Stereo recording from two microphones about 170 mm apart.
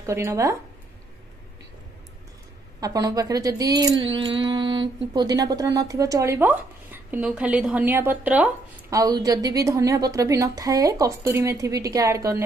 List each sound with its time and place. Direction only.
0.0 s speech: 15° right (ahead or behind)
2.8 s a woman's voice: 20° right (ahead or behind)
8.9 s a woman's voice: 20° right (ahead or behind)